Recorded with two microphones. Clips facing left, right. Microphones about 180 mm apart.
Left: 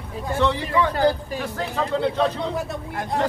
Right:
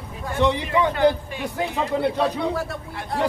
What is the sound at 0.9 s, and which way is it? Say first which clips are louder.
Speech: right 1 dB; 40° left (ahead or behind).